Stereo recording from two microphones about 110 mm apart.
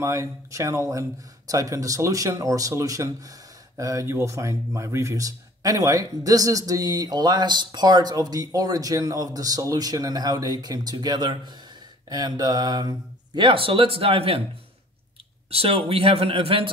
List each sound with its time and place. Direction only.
0.0 s speech: 25° right (ahead or behind); by 14.4 s 60° right (ahead or behind)
15.5 s speech: 60° right (ahead or behind)